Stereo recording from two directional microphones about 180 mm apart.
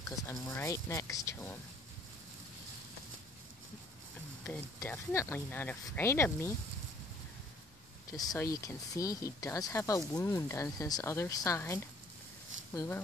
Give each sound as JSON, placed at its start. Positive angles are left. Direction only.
{"t": 0.3, "sound": "speech", "side_deg": 20}
{"t": 4.5, "sound": "speech", "side_deg": 10}
{"t": 8.2, "sound": "speech", "side_deg": 20}